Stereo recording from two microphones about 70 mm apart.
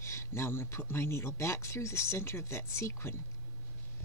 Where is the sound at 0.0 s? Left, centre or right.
Left.